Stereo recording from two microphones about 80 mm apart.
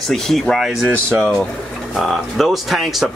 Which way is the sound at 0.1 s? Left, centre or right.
Centre.